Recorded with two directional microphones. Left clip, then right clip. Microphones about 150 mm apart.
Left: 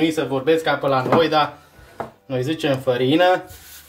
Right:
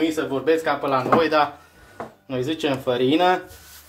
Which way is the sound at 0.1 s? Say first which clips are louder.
Left 2 dB; 30° right (ahead or behind).